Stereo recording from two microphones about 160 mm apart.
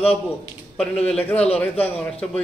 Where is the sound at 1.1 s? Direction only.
5° left (ahead or behind).